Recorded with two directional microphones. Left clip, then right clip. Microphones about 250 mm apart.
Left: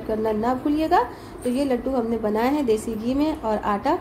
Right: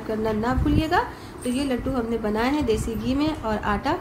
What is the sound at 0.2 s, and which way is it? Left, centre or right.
A woman's voice, centre.